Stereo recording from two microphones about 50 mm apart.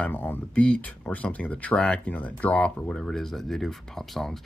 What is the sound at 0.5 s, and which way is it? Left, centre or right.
A man's voice, left.